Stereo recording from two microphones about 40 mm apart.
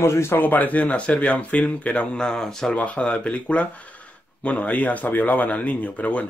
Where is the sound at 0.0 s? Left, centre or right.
Left.